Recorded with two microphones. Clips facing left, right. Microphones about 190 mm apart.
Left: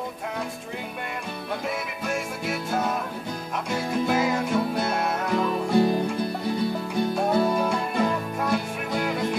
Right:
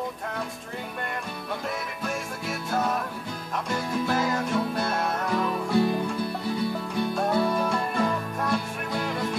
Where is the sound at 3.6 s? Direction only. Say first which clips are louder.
Left 3 dB; 5° left (ahead or behind).